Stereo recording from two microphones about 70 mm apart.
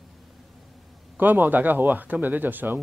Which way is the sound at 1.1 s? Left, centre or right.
Right.